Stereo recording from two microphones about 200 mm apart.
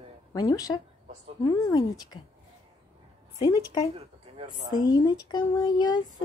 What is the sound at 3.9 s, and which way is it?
Speech, 30° right (ahead or behind).